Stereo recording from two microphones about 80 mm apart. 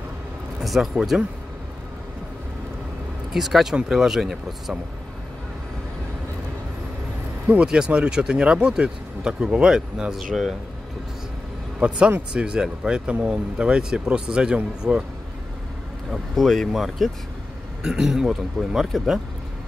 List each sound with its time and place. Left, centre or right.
0.6 s a man's voice: centre
3.3 s a man's voice: centre
7.4 s speech: centre
11.8 s speech: centre
16.1 s a man's voice: centre